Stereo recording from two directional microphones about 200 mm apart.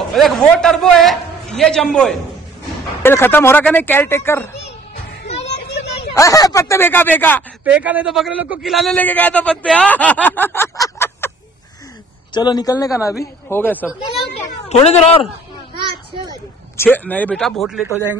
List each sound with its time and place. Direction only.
0.1 s a man's voice: centre (ahead or behind)
5.3 s children playing: 35° left (ahead or behind)
6.1 s a man's voice: 15° left (ahead or behind)
7.6 s a man's voice: 5° right (ahead or behind); by 11.3 s 10° left (ahead or behind)
12.4 s a man's voice: 20° left (ahead or behind)
14.7 s speech: 30° left (ahead or behind)
16.7 s a man's voice: 10° left (ahead or behind)